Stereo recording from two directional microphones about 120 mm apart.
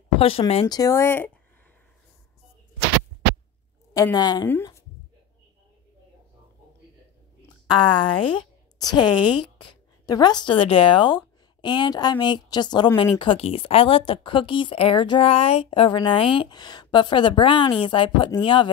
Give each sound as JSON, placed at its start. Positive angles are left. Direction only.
{"t": 0.2, "sound": "speech", "side_deg": 55}
{"t": 0.7, "sound": "speech", "side_deg": 30}
{"t": 3.9, "sound": "a woman's voice", "side_deg": 30}
{"t": 7.6, "sound": "a woman's voice", "side_deg": 40}